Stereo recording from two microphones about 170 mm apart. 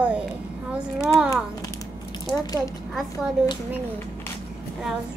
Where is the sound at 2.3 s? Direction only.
20° left (ahead or behind).